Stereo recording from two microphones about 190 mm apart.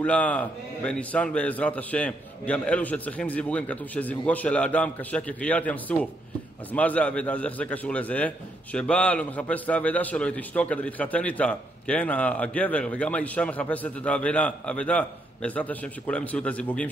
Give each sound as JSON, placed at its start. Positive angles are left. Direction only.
{"t": 0.0, "sound": "a man's voice", "side_deg": 5}